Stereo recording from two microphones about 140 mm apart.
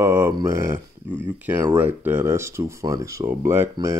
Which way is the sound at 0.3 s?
25° right (ahead or behind).